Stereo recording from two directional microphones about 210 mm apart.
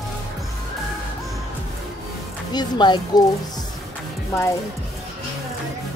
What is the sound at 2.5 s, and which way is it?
Speech, 20° left (ahead or behind).